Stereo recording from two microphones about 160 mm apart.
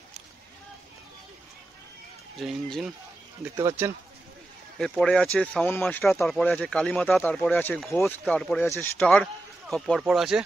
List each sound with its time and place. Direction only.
2.4 s speech: centre (ahead or behind)
3.5 s speech: 15° right (ahead or behind)
4.7 s speech: 5° left (ahead or behind)
9.0 s speech: 5° left (ahead or behind)